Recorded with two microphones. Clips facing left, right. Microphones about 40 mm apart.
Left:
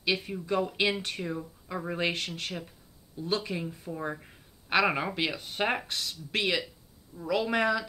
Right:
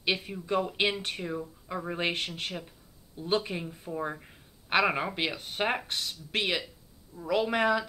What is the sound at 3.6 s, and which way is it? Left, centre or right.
Speech, centre.